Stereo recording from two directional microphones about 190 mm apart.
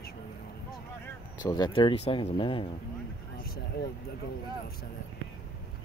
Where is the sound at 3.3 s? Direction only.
50° left (ahead or behind).